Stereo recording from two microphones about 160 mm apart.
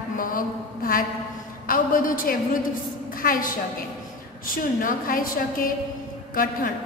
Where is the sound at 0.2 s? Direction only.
60° left (ahead or behind).